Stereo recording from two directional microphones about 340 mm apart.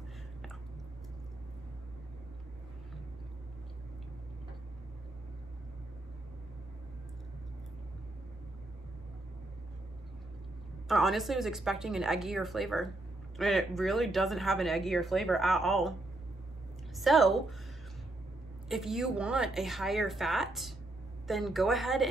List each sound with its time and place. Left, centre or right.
10.9 s speech: centre
16.9 s speech: centre
18.7 s speech: centre